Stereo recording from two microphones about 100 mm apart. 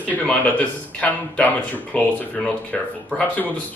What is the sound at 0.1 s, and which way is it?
A man's voice, 15° left (ahead or behind).